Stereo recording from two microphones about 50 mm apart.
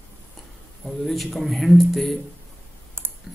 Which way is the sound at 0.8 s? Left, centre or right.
Centre.